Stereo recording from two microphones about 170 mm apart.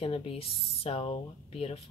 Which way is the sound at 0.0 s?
35° left (ahead or behind).